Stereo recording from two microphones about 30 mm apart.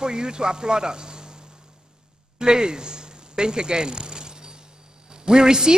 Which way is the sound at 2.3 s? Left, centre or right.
Right.